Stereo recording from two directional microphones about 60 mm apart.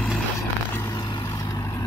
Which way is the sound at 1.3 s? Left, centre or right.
Left.